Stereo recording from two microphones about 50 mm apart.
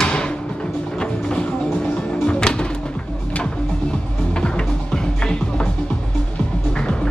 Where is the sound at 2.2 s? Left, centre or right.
Centre.